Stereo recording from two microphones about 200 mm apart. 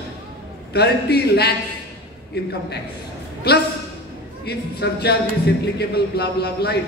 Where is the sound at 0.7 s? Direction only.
55° left (ahead or behind).